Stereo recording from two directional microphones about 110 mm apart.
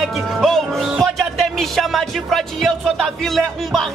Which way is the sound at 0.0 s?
Centre (ahead or behind).